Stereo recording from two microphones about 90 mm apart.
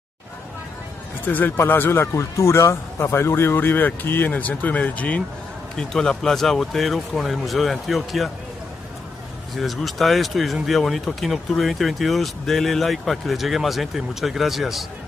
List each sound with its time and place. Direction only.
1.2 s speech: 20° left (ahead or behind); by 8.3 s centre (ahead or behind)
9.6 s speech: centre (ahead or behind)